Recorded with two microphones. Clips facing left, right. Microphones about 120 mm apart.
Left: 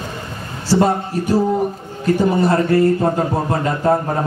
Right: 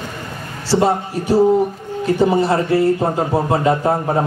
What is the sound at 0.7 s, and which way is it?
Speech, 45° left (ahead or behind).